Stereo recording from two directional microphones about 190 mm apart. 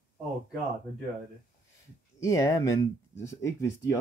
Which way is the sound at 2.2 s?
15° left (ahead or behind).